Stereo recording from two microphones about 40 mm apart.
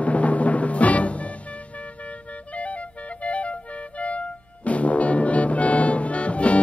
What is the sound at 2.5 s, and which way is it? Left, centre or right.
Clarinet, left.